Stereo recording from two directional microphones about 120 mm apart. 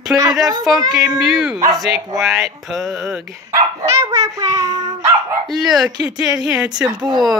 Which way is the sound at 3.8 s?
30° right (ahead or behind).